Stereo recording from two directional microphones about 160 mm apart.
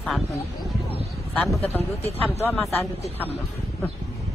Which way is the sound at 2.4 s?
5° left (ahead or behind).